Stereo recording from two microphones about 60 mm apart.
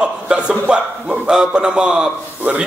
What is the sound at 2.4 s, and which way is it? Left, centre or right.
Speech, right.